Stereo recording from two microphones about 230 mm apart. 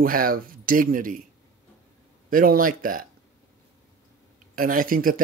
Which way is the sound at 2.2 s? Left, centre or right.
Right.